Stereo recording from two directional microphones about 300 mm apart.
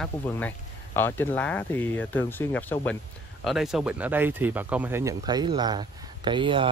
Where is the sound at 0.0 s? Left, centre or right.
Centre.